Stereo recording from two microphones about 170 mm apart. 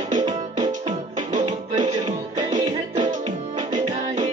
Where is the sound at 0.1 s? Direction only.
35° right (ahead or behind).